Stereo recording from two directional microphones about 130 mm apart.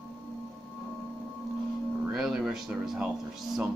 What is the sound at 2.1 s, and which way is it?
Speech, 5° right (ahead or behind).